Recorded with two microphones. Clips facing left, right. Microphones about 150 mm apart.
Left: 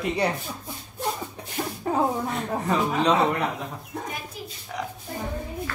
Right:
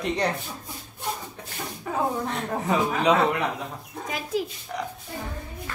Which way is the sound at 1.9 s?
40° left (ahead or behind).